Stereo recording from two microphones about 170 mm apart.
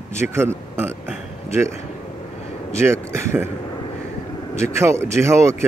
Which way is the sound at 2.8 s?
15° right (ahead or behind).